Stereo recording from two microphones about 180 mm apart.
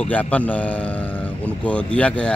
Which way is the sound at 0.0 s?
10° left (ahead or behind).